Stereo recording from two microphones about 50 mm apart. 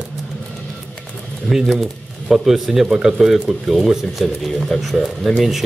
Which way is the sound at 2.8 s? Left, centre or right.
Centre.